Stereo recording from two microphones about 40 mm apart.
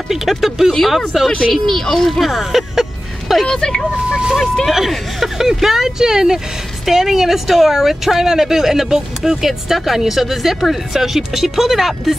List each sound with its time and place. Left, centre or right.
0.1 s speech: centre
3.4 s speech: centre
4.1 s speech: right
4.6 s speech: centre